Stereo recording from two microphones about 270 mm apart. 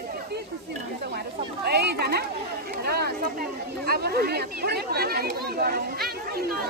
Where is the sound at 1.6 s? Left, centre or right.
Right.